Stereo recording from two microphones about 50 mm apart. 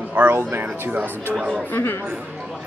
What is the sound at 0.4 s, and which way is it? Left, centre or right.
Speech, right.